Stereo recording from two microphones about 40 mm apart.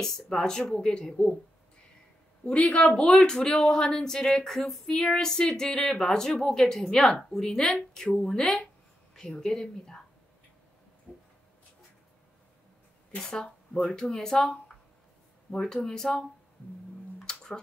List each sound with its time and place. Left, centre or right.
0.0 s speech: centre
2.5 s a woman's voice: left
3.0 s speech: centre
11.1 s a sound: left
13.2 s speech: centre
17.2 s music: centre